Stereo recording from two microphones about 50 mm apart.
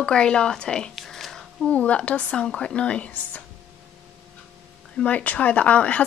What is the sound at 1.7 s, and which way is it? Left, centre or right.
A woman's voice, left.